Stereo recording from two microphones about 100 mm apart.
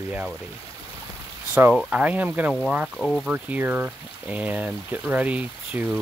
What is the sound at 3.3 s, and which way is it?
Speech, 15° right (ahead or behind).